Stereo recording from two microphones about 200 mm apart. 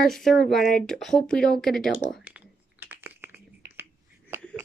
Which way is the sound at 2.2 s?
10° right (ahead or behind).